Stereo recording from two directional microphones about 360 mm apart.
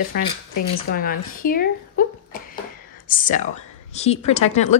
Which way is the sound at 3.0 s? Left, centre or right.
Left.